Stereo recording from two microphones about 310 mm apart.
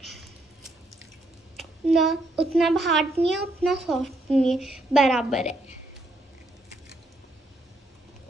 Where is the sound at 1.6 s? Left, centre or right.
Centre.